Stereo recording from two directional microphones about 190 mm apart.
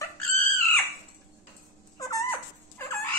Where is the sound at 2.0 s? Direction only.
15° left (ahead or behind).